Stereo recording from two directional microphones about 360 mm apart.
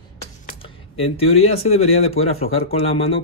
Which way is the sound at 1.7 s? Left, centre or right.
Left.